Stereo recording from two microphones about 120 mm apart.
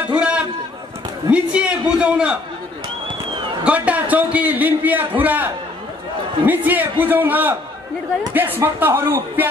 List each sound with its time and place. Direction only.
0.1 s a sound: 10° right (ahead or behind)
1.3 s a man's voice: 10° right (ahead or behind)
3.6 s a man's voice: 10° right (ahead or behind)